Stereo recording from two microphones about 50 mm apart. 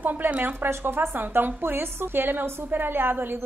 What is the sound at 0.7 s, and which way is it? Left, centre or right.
A woman's voice, right.